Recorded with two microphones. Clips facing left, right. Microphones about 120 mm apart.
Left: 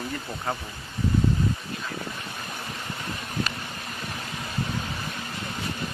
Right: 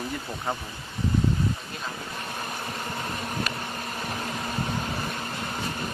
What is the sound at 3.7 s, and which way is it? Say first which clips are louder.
Vehicle: right 3 dB; 40° right (ahead or behind).